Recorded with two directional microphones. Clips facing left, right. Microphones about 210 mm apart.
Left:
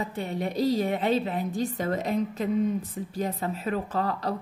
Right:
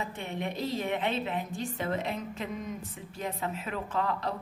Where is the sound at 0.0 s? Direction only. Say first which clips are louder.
Left 5 dB; 35° left (ahead or behind).